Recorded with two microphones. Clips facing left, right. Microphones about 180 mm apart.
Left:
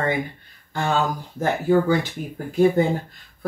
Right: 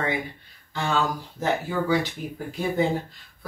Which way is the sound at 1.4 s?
50° left (ahead or behind).